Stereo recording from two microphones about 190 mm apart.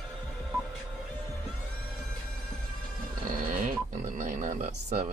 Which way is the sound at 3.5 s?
40° right (ahead or behind).